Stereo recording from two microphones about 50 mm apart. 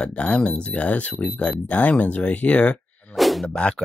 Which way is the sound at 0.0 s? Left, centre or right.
Left.